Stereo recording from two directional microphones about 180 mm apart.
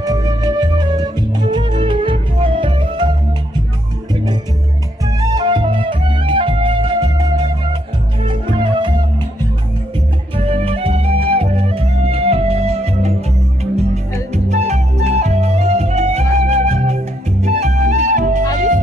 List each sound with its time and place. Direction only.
0.0 s music: 20° right (ahead or behind)
4.1 s music: 25° right (ahead or behind)
10.3 s music: 35° right (ahead or behind)
14.3 s music: 40° right (ahead or behind)